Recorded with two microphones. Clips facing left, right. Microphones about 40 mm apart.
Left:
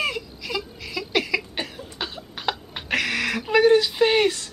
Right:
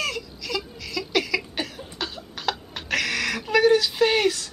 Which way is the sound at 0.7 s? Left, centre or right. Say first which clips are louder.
Even; centre.